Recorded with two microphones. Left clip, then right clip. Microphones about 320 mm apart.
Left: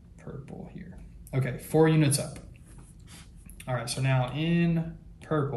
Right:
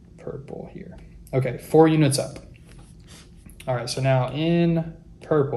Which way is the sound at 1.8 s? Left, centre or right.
Centre.